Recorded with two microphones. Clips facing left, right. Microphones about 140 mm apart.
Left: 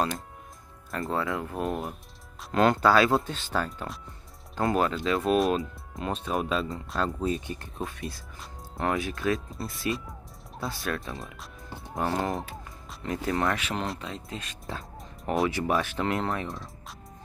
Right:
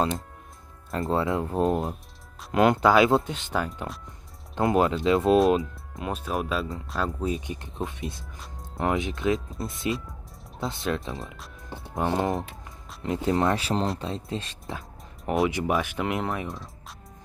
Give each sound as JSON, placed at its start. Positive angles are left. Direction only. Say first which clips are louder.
{"t": 0.9, "sound": "speech", "louder": "right 4 dB", "side_deg": -25}
{"t": 5.9, "sound": "speech", "louder": "even", "side_deg": -5}
{"t": 7.4, "sound": "speech", "louder": "right 2 dB", "side_deg": -20}
{"t": 15.4, "sound": "speech", "louder": "right 1 dB", "side_deg": -20}